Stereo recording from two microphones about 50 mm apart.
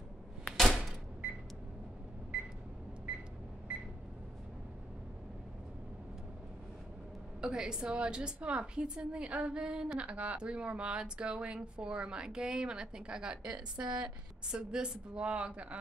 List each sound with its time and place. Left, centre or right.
0.5 s door: centre
7.4 s a woman's voice: centre